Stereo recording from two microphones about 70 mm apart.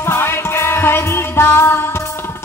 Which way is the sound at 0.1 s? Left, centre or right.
Left.